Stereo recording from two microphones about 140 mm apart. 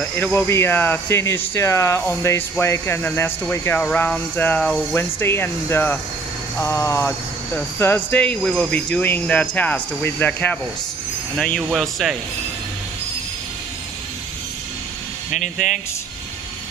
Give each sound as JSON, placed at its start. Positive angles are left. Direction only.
{"t": 0.2, "sound": "speech", "side_deg": 15}